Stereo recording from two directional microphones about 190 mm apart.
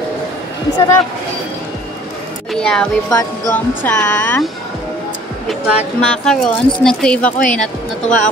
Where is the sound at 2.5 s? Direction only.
5° left (ahead or behind).